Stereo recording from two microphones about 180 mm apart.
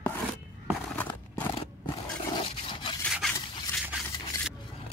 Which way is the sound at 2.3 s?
25° left (ahead or behind).